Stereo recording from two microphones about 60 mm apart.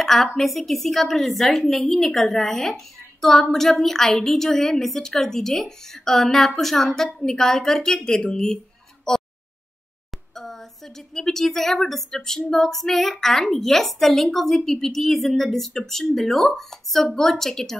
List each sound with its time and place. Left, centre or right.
0.0 s a woman's voice: centre
10.3 s a woman's voice: centre